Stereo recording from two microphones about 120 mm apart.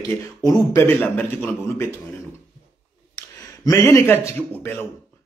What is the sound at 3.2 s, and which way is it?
Speech, 30° left (ahead or behind).